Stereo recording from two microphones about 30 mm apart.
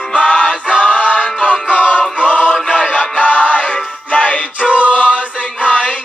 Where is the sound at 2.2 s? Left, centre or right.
Left.